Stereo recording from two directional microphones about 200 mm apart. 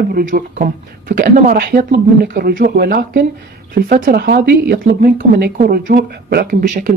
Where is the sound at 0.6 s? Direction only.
45° right (ahead or behind).